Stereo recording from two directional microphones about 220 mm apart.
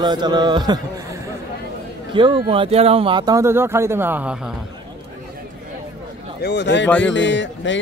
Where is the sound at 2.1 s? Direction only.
20° right (ahead or behind); by 4.5 s 5° right (ahead or behind).